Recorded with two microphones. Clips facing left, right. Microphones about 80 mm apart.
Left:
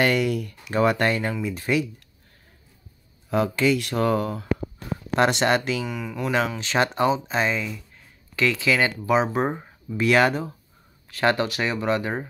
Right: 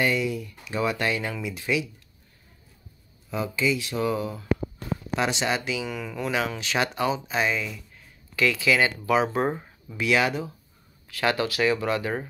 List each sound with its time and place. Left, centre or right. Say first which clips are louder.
0.0 s speech: left 4 dB; left
3.3 s speech: left 5 dB; left
5.9 s speech: left 2 dB; centre
6.6 s speech: left 4 dB; left; by 9.9 s centre
9.9 s speech: left 4 dB; left
11.1 s speech: left 3 dB; left